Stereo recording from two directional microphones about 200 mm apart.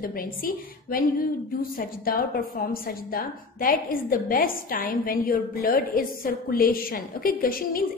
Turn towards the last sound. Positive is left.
turn(degrees=45)  # may be behind; listen again after turning